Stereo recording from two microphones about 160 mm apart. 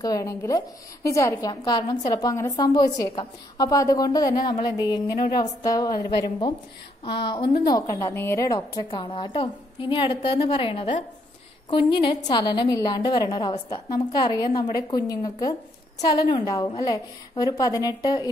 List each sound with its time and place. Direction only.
0.0 s a woman's voice: 20° left (ahead or behind)